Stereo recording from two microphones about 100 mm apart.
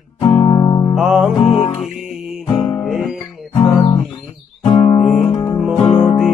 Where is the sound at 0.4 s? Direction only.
40° left (ahead or behind).